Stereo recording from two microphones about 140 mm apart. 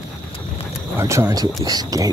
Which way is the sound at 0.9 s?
20° right (ahead or behind).